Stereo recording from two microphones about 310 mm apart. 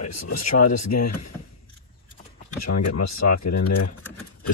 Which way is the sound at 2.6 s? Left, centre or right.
Left.